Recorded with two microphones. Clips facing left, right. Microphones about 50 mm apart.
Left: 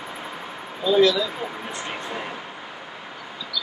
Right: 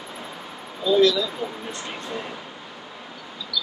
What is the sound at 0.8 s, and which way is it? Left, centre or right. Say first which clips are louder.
Speech: even; centre.